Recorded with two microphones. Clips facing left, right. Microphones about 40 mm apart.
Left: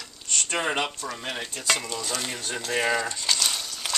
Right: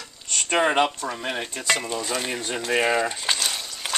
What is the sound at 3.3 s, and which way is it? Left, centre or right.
Stir, centre.